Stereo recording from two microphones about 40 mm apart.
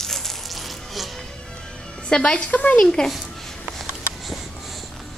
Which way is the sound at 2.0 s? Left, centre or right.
Left.